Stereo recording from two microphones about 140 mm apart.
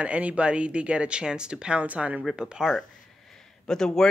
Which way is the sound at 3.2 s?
5° left (ahead or behind).